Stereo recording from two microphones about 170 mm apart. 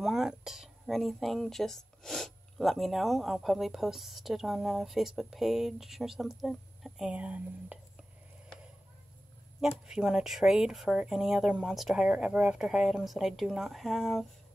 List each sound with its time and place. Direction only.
0.0 s speech: centre (ahead or behind)
9.6 s speech: 5° right (ahead or behind)